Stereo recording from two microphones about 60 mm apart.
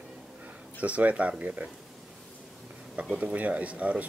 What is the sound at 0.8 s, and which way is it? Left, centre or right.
Speech, right.